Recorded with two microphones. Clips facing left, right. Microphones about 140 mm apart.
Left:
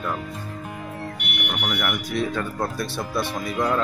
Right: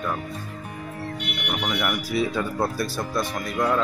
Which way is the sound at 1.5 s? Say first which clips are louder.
Right 1 dB; 5° right (ahead or behind).